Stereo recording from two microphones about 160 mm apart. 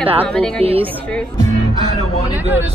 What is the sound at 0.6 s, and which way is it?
Speech, 35° right (ahead or behind).